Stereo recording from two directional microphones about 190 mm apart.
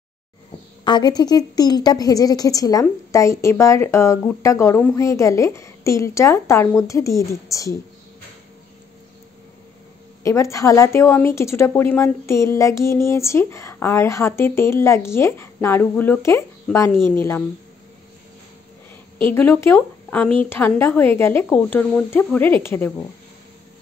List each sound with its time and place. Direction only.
0.8 s a woman's voice: 20° left (ahead or behind)
10.2 s a woman's voice: 15° left (ahead or behind)
19.3 s a woman's voice: 10° left (ahead or behind)